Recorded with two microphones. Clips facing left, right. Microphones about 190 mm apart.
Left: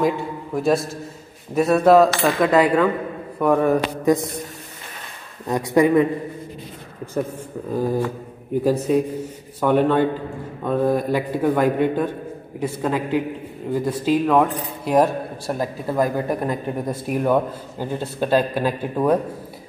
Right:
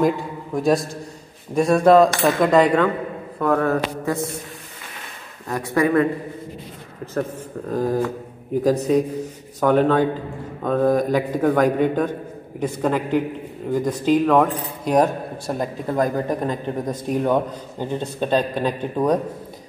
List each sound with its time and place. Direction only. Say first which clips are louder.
0.6 s a man's voice: right 1 dB; centre (ahead or behind); by 4.3 s 15° left (ahead or behind)
5.5 s speech: left 3 dB; 15° left (ahead or behind)
7.7 s speech: right 1 dB; 10° left (ahead or behind)